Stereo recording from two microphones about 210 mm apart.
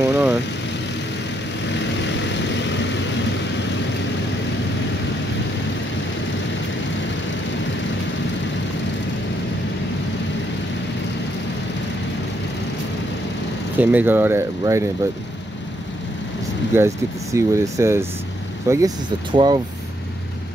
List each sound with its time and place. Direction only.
0.1 s vehicle: 10° right (ahead or behind)
1.7 s vehicle: 55° left (ahead or behind)
13.7 s speech: 10° right (ahead or behind)
16.7 s speech: 15° right (ahead or behind)